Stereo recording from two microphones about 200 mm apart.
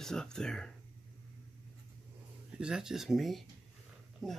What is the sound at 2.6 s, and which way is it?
Speech, 5° right (ahead or behind).